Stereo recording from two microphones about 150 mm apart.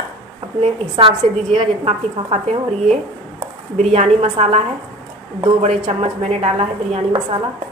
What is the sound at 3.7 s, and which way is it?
A woman's voice, 45° right (ahead or behind).